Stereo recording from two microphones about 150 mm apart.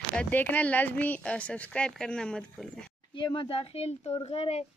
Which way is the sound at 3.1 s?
30° left (ahead or behind).